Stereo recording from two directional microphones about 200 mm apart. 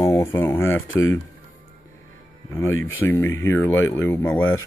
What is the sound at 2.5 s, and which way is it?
Speech, 15° left (ahead or behind).